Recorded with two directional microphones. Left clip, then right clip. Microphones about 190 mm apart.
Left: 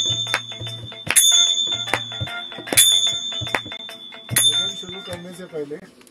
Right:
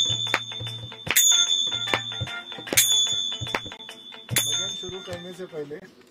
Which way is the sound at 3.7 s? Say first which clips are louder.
Left 6 dB; 5° left (ahead or behind).